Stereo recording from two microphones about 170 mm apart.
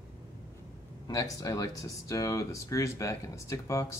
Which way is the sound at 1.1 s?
20° left (ahead or behind).